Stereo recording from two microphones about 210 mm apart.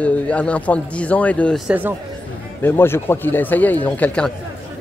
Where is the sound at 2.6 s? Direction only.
10° left (ahead or behind).